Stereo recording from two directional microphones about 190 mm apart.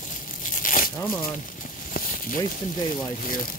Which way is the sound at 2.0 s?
50° left (ahead or behind).